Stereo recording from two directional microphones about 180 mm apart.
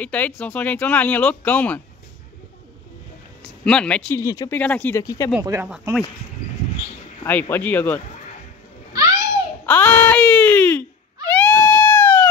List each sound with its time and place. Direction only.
0.0 s speech: 10° left (ahead or behind)
3.6 s speech: 5° left (ahead or behind)
4.2 s speech: 20° left (ahead or behind)
5.4 s speech: 15° right (ahead or behind)
7.2 s speech: 10° left (ahead or behind)
8.9 s babbling: 20° right (ahead or behind)
9.7 s baby cry: 10° left (ahead or behind)
11.2 s a sound: 10° left (ahead or behind)